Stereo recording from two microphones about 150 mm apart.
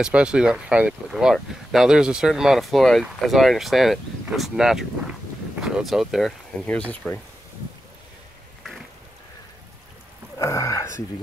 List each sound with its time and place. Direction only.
0.0 s speech: 5° right (ahead or behind)
10.4 s speech: 20° left (ahead or behind)